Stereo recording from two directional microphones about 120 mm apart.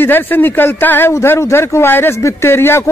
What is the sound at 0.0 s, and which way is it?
A man's voice, 15° left (ahead or behind).